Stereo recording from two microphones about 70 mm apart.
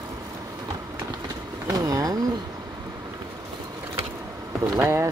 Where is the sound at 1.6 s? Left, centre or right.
Right.